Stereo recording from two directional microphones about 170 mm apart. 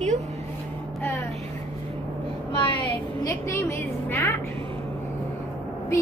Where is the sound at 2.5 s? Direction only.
30° left (ahead or behind).